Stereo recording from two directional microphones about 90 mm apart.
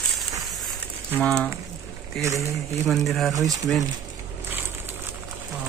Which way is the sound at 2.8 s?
Centre (ahead or behind).